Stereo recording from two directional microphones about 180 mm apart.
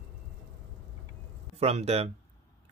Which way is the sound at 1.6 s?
35° right (ahead or behind).